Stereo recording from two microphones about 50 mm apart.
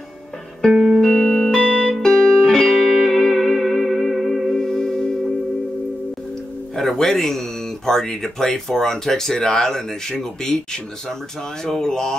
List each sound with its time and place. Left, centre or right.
0.7 s music: centre
1.0 s music: centre
6.7 s speech: centre